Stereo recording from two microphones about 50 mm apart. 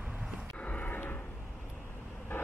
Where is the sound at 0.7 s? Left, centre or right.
Left.